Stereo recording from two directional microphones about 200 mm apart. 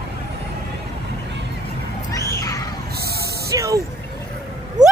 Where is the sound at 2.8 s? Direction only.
50° right (ahead or behind).